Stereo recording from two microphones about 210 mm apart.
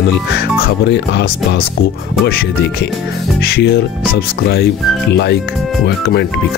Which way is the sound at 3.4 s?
50° left (ahead or behind).